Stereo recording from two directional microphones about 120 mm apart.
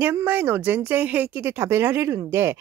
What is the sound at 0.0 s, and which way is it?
Speech, 20° right (ahead or behind).